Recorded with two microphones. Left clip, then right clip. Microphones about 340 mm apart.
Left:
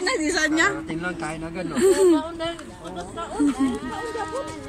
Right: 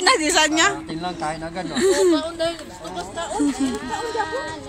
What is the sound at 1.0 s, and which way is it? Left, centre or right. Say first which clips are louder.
Speech: right 3 dB; centre.